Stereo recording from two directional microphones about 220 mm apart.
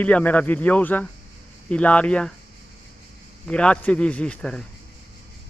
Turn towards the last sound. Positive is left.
turn(degrees=5)  # may be behind; listen again after turning